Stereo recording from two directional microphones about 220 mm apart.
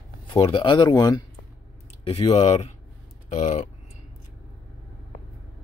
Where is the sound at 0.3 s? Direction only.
25° left (ahead or behind).